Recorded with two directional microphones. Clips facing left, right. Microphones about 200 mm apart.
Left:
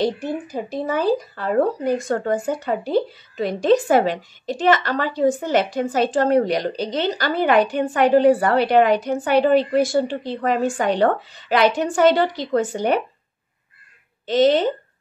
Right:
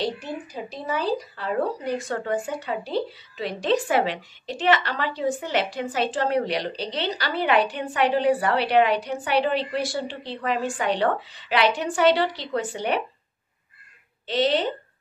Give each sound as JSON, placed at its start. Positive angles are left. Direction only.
{"t": 0.0, "sound": "speech", "side_deg": 50}
{"t": 14.2, "sound": "speech", "side_deg": 45}